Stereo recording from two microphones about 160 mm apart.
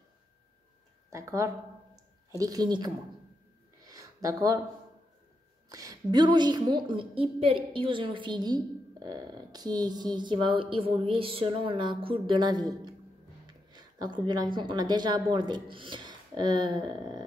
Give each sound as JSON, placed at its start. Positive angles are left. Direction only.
{"t": 1.1, "sound": "a woman's voice", "side_deg": -20}
{"t": 3.8, "sound": "a sound", "side_deg": -20}
{"t": 5.7, "sound": "a woman's voice", "side_deg": -20}